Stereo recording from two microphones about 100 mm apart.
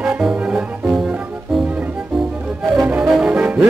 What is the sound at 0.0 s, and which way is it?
Music, 5° right (ahead or behind).